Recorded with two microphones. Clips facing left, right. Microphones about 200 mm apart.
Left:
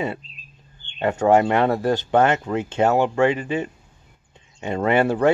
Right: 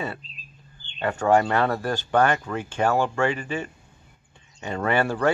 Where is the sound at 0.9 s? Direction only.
20° left (ahead or behind).